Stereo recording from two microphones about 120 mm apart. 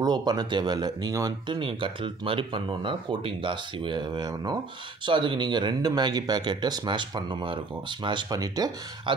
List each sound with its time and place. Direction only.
0.0 s speech: 35° right (ahead or behind)
1.6 s speech: 45° right (ahead or behind)